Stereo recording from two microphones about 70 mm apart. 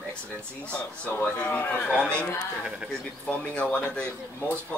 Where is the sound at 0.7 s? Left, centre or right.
Centre.